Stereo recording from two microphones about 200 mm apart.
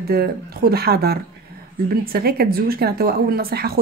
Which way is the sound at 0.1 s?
50° right (ahead or behind).